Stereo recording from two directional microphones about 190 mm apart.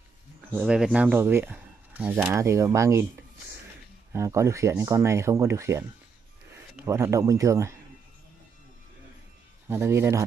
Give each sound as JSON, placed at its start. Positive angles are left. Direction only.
{"t": 0.5, "sound": "speech", "side_deg": -5}
{"t": 9.7, "sound": "speech", "side_deg": -15}